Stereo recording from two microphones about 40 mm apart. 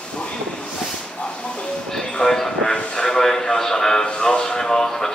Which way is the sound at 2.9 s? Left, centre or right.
Centre.